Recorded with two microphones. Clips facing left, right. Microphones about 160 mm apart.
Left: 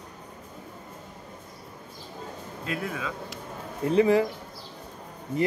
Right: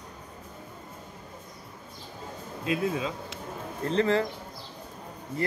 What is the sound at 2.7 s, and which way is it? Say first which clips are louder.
Speech: right 4 dB; 25° right (ahead or behind).